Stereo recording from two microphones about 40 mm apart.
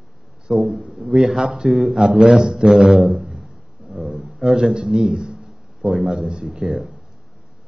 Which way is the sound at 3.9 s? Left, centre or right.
Centre.